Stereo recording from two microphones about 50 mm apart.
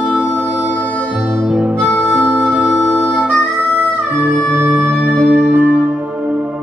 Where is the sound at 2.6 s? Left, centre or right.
Centre.